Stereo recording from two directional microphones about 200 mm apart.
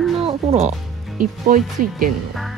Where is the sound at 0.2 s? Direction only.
30° right (ahead or behind).